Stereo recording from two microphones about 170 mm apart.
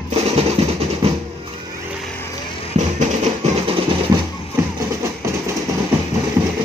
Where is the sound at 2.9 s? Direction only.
40° right (ahead or behind).